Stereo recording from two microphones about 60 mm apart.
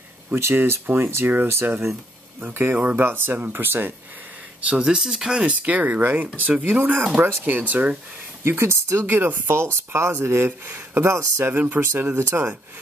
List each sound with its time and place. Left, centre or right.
0.3 s speech: right
2.4 s speech: right
4.6 s speech: centre
8.5 s speech: right
9.0 s speech: right